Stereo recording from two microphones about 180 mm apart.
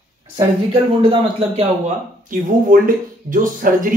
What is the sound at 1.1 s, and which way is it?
Speech, 30° right (ahead or behind).